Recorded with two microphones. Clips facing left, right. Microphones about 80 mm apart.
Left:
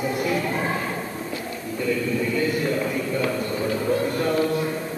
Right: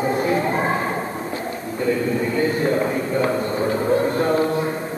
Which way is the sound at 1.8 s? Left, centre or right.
Right.